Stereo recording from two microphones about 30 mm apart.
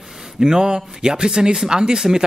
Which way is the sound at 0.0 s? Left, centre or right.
Centre.